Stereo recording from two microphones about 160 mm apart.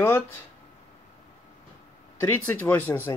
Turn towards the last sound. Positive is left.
turn(degrees=10)  # may be behind; listen again after turning